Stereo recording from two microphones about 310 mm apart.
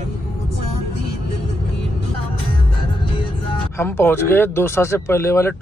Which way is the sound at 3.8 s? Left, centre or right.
Centre.